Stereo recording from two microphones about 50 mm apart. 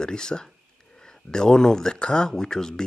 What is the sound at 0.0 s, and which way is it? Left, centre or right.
Speech, centre.